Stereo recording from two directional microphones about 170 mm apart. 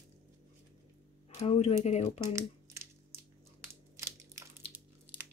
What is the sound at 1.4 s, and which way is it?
Speech, 35° left (ahead or behind).